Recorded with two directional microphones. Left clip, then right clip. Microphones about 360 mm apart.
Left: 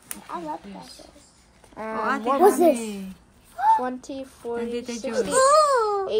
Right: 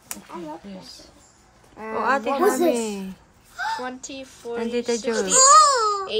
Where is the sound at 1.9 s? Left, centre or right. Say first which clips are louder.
Right 2 dB; right.